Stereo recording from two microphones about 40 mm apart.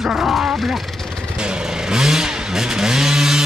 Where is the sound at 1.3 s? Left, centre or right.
Right.